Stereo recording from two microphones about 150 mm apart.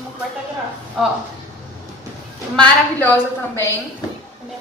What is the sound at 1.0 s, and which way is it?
Speech, centre (ahead or behind).